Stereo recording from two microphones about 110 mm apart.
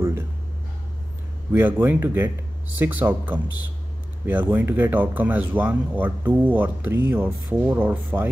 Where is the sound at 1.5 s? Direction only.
20° right (ahead or behind).